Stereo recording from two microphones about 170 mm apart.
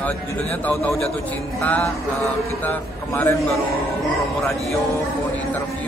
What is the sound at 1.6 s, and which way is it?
Speech, 10° left (ahead or behind).